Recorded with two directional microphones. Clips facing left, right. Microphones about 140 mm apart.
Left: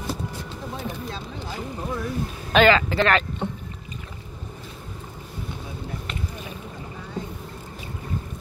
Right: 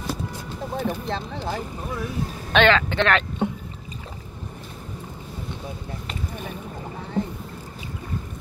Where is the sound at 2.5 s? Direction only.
5° left (ahead or behind).